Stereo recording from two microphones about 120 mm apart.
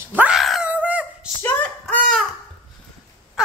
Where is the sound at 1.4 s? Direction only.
10° left (ahead or behind).